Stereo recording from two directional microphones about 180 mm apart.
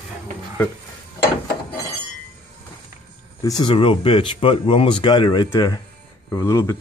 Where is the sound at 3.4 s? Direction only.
25° left (ahead or behind).